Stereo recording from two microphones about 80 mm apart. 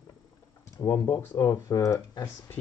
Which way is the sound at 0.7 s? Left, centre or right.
Left.